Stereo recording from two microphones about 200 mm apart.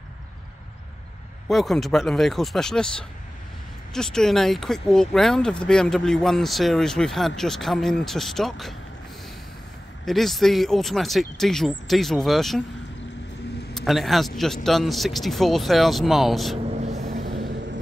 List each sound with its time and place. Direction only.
1.5 s speech: centre (ahead or behind)
10.0 s speech: centre (ahead or behind)
13.7 s speech: centre (ahead or behind)
16.7 s vehicle: 35° right (ahead or behind)